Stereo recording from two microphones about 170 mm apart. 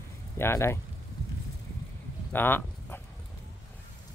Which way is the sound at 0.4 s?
15° left (ahead or behind).